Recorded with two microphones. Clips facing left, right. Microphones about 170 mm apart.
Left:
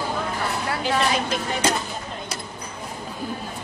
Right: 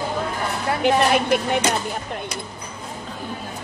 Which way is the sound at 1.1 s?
60° right (ahead or behind).